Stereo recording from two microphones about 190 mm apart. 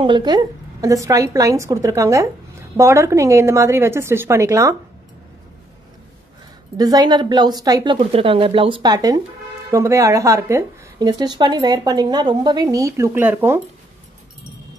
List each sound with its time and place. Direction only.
0.0 s speech: 25° right (ahead or behind)
6.8 s a woman's voice: 20° right (ahead or behind)